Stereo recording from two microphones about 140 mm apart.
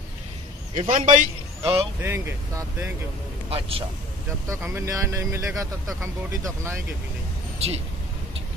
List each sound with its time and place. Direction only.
0.7 s a man's voice: 70° right (ahead or behind)
1.6 s speech: 15° right (ahead or behind)
3.4 s speech: 45° right (ahead or behind)
4.5 s speech: 20° right (ahead or behind)
7.5 s speech: 45° right (ahead or behind)